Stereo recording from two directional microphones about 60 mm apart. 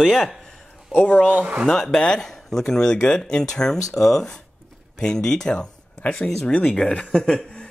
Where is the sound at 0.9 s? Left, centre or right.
Left.